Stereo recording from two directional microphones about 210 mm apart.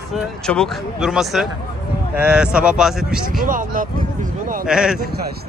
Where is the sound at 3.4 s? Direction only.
40° right (ahead or behind).